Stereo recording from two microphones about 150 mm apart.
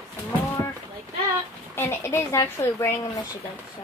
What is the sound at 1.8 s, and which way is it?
A woman's voice, 15° left (ahead or behind).